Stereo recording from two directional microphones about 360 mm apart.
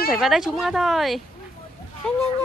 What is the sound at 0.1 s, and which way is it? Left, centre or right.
Speech, centre.